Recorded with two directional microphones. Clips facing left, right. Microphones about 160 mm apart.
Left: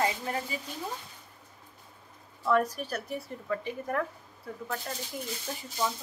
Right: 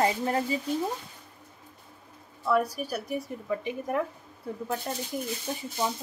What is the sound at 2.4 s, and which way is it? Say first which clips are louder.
Speech: right 1 dB; 10° right (ahead or behind).